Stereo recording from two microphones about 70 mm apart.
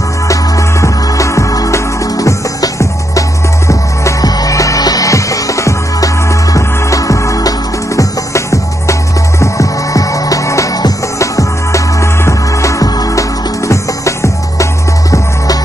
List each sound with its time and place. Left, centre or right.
0.3 s music: left
4.2 s music: left